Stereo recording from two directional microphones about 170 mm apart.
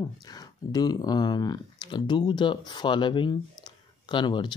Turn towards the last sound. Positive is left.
turn(degrees=30)  # may be behind; listen again after turning